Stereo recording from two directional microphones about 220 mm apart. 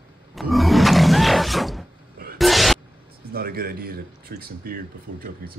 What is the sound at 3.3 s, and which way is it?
Speech, 45° right (ahead or behind).